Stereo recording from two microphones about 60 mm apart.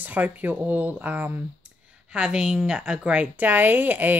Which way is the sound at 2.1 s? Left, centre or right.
Centre.